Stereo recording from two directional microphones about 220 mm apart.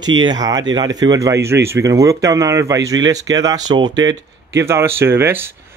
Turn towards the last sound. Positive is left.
turn(degrees=-10)  # may be behind; listen again after turning